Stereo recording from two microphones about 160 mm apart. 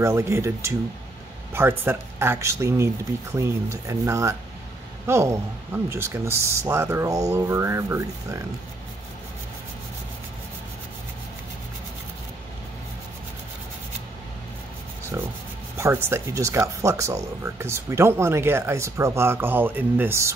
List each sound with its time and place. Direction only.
0.0 s speech: 15° right (ahead or behind)
15.8 s speech: 15° right (ahead or behind)